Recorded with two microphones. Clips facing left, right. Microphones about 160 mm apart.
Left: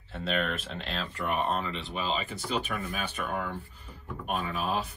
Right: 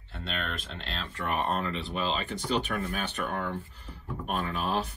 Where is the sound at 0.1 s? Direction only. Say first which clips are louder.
Left 5 dB; 5° left (ahead or behind).